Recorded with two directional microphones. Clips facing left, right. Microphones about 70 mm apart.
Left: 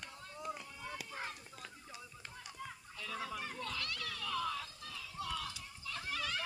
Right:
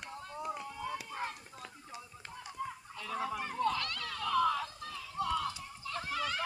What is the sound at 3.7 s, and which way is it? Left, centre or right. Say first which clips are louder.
Children playing: right 6 dB; right.